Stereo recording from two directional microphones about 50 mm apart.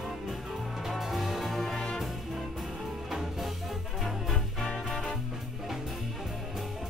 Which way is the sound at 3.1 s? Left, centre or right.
Centre.